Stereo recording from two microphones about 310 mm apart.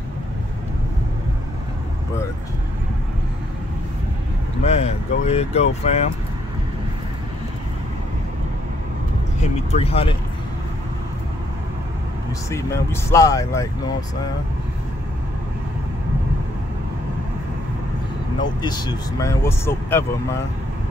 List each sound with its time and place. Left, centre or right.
4.6 s speech: centre
9.7 s speech: centre
12.4 s speech: centre
18.4 s speech: centre